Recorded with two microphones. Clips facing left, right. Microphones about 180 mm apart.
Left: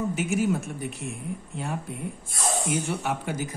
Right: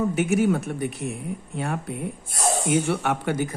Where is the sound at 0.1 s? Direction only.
65° right (ahead or behind).